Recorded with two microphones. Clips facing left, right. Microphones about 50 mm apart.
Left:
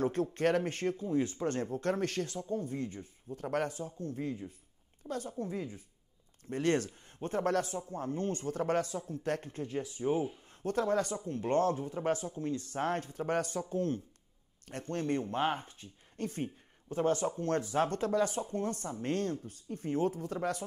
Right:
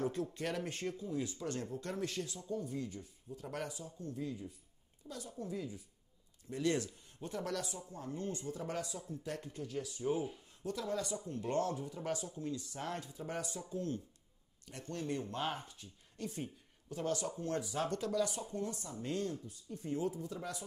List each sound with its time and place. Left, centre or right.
0.0 s a woman's voice: left
10.6 s speech: left